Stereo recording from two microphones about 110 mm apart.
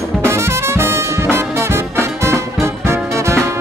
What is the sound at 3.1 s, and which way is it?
Music, 25° right (ahead or behind).